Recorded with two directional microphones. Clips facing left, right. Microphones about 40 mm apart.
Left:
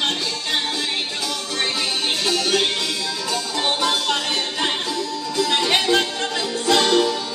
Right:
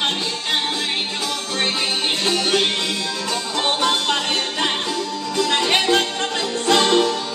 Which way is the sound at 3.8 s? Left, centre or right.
Right.